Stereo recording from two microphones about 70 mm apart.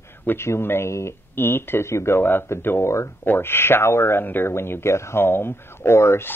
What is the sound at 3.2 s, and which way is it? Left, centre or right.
Speech, left.